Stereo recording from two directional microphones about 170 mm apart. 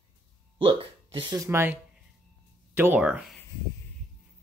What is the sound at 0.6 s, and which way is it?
Speech, 30° right (ahead or behind).